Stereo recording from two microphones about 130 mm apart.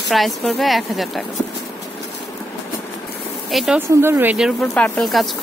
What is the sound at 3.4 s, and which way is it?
Speech, centre (ahead or behind).